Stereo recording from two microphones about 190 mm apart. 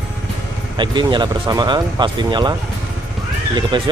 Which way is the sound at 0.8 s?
25° right (ahead or behind).